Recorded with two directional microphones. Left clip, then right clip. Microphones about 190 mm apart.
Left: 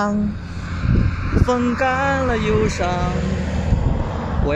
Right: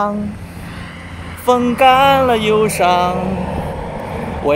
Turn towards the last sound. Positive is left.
turn(degrees=-10)  # may be behind; listen again after turning